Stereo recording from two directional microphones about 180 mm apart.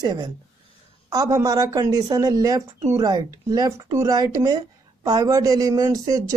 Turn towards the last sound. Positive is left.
turn(degrees=-20)  # may be behind; listen again after turning